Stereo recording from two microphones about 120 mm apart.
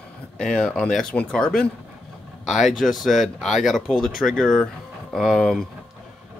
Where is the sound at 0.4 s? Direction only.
5° left (ahead or behind).